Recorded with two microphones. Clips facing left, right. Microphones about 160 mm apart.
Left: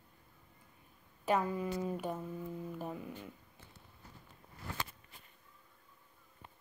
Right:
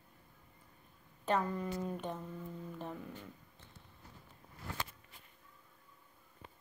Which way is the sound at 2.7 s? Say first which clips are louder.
Left 2 dB; 10° left (ahead or behind).